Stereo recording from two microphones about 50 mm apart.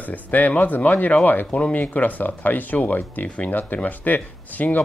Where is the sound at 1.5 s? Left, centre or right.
Left.